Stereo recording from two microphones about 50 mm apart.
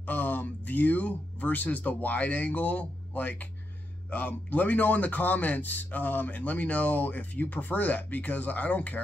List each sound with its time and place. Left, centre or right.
0.0 s speech: left